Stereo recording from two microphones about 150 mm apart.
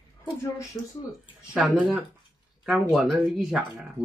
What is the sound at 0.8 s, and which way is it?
Speech, 15° left (ahead or behind).